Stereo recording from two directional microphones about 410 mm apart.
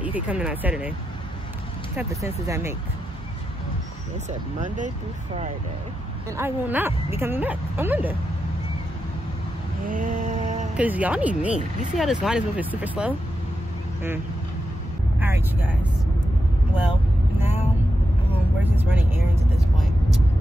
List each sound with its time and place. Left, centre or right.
0.0 s speech: centre
2.0 s speech: centre
4.3 s speech: centre
6.3 s speech: centre
9.8 s a sound: centre
10.8 s speech: centre
15.1 s vehicle: centre
18.6 s speech: centre